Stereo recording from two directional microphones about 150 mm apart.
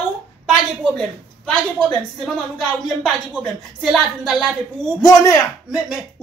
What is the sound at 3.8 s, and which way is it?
Speech, centre (ahead or behind).